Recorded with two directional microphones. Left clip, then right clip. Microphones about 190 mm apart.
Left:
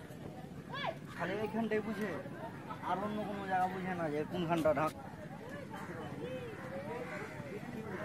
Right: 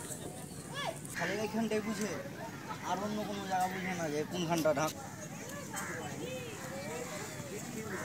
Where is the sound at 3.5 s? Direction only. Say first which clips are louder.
Even; 25° right (ahead or behind).